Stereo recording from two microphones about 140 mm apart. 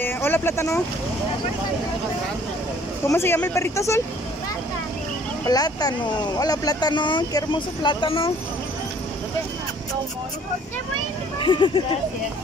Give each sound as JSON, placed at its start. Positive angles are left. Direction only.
{"t": 0.0, "sound": "speech", "side_deg": 15}
{"t": 3.1, "sound": "speech", "side_deg": 15}
{"t": 5.4, "sound": "speech", "side_deg": 25}
{"t": 11.3, "sound": "speech", "side_deg": 35}